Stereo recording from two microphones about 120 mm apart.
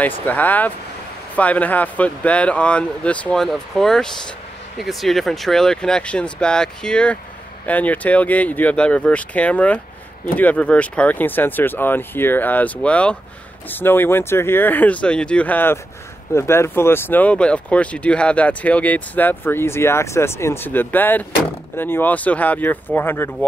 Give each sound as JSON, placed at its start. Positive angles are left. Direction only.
{"t": 0.3, "sound": "speech", "side_deg": 15}